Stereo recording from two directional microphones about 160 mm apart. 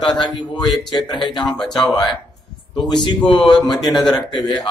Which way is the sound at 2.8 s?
30° left (ahead or behind).